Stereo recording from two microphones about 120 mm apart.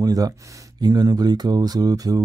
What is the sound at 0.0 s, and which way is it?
Speech, 30° right (ahead or behind).